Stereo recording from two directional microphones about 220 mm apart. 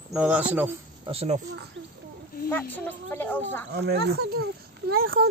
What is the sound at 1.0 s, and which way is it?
Speech, 30° right (ahead or behind).